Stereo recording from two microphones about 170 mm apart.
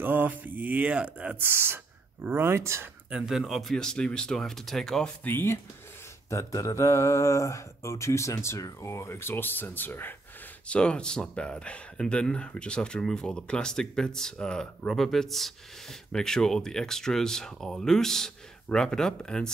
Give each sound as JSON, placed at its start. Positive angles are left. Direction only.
{"t": 0.0, "sound": "speech", "side_deg": -10}
{"t": 3.1, "sound": "speech", "side_deg": -5}